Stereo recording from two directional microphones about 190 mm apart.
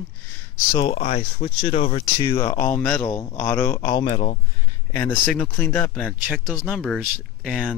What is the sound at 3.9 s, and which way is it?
Speech, 30° left (ahead or behind).